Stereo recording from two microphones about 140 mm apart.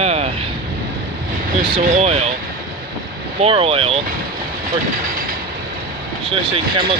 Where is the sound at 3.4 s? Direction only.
45° right (ahead or behind).